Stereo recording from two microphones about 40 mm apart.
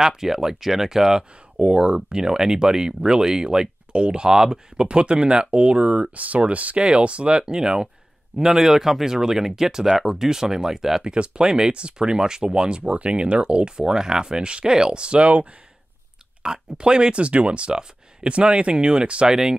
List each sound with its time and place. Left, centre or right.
0.0 s speech: centre
1.7 s speech: right
6.1 s speech: right
6.8 s speech: right
11.1 s speech: right
16.4 s speech: centre
19.2 s speech: centre